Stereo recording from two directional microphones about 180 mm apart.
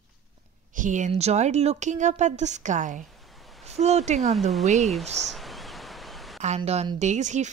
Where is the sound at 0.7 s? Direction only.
45° right (ahead or behind).